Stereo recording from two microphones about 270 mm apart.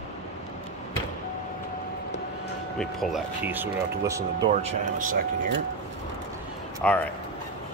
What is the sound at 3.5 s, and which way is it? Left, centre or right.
Speech, centre.